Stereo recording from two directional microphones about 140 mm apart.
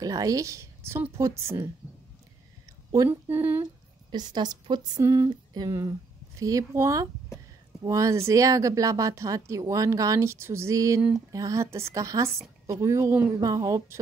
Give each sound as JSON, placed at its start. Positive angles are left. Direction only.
{"t": 0.0, "sound": "a woman's voice", "side_deg": -25}
{"t": 3.1, "sound": "speech", "side_deg": -15}
{"t": 4.1, "sound": "a woman's voice", "side_deg": -30}
{"t": 11.0, "sound": "speech", "side_deg": -5}
{"t": 11.3, "sound": "speech", "side_deg": -25}